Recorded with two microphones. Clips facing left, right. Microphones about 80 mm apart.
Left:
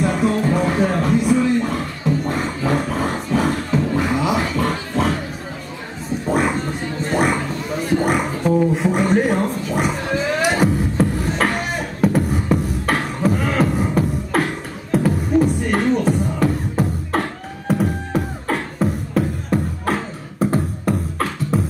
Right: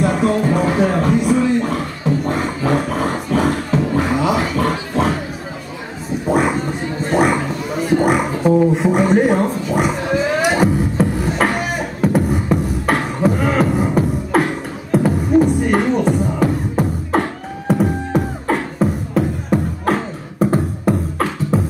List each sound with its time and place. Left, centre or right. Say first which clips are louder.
0.0 s music: right 2 dB; centre
3.3 s beatboxing: right 2 dB; centre
6.2 s a sound: right 3 dB; centre
9.4 s beatboxing: right 3 dB; centre